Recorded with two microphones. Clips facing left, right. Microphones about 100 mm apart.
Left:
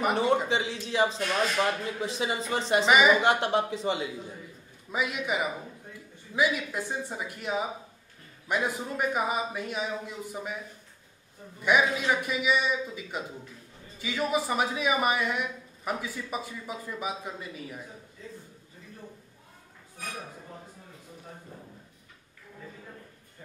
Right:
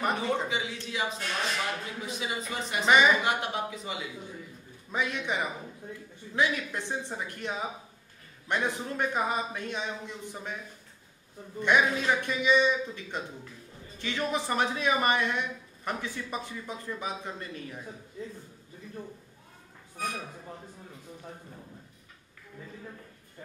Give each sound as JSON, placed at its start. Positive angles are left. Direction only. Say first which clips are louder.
{"t": 0.5, "sound": "speech", "louder": "left 4 dB", "side_deg": 30}
{"t": 2.9, "sound": "speech", "louder": "even", "side_deg": 10}
{"t": 3.3, "sound": "speech", "louder": "left 5 dB", "side_deg": 30}
{"t": 4.9, "sound": "speech", "louder": "left 1 dB", "side_deg": 10}
{"t": 11.6, "sound": "speech", "louder": "even", "side_deg": 5}